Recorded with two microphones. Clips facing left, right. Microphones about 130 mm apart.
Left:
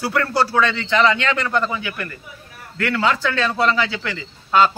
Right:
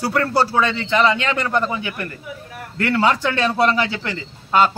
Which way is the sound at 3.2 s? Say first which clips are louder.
Right 2 dB; 15° right (ahead or behind).